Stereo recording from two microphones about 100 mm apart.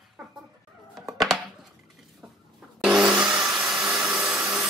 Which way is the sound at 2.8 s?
10° right (ahead or behind).